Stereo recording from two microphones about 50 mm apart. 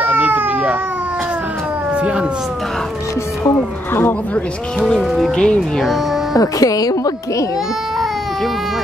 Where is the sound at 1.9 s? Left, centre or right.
Right.